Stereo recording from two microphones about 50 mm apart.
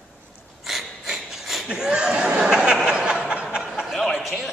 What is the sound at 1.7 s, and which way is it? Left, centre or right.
Chuckle, centre.